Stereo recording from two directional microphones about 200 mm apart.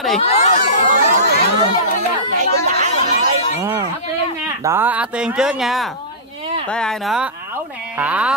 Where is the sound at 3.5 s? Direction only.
15° right (ahead or behind).